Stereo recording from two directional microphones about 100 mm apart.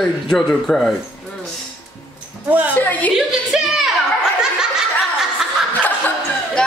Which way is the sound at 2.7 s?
15° left (ahead or behind).